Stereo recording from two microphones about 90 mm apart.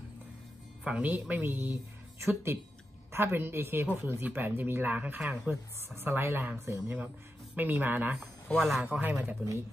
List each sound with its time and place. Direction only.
0.8 s a woman's voice: 15° right (ahead or behind)
8.5 s a man's voice: 5° left (ahead or behind)
9.0 s speech: 20° right (ahead or behind)